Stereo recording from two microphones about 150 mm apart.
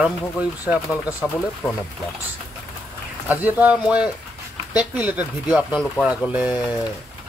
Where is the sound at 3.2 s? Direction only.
10° right (ahead or behind).